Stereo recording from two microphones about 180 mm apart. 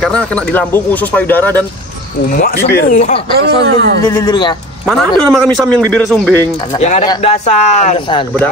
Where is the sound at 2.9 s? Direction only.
40° left (ahead or behind).